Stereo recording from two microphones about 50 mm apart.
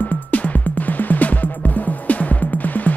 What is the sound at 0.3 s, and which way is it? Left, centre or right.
Music, left.